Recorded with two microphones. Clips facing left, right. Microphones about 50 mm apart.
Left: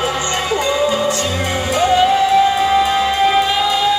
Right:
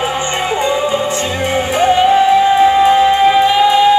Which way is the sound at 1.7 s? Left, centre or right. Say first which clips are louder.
Right 3 dB; right.